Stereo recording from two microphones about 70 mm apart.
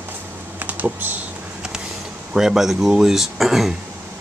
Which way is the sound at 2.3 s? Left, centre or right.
Centre.